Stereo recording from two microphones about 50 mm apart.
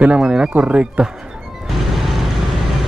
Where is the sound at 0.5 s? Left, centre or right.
Right.